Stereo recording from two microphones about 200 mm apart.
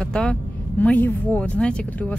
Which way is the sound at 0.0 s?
5° left (ahead or behind).